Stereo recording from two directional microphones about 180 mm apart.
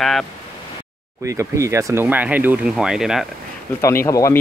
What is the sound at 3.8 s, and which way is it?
Speech, 15° left (ahead or behind).